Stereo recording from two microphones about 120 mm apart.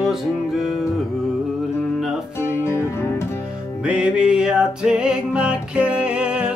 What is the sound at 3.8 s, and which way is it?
Music, 10° right (ahead or behind).